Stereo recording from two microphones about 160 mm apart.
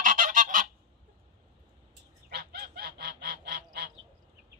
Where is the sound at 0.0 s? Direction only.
60° right (ahead or behind).